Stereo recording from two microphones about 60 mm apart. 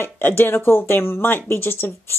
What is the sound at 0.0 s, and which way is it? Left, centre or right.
A woman's voice, left.